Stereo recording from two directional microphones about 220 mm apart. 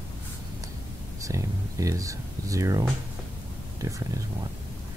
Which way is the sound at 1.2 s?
15° right (ahead or behind).